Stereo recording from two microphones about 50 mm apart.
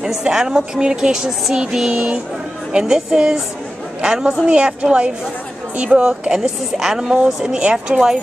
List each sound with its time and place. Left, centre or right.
0.0 s a woman's voice: centre